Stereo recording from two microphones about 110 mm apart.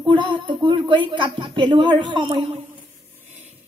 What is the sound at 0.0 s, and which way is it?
A woman's voice, 45° right (ahead or behind).